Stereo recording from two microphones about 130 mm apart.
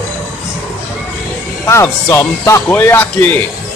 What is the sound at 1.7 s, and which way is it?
A man's voice, 20° left (ahead or behind).